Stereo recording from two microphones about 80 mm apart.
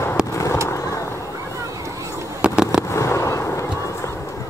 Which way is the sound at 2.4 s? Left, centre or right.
Centre.